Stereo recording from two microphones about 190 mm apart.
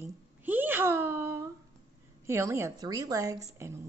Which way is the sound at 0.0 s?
10° right (ahead or behind).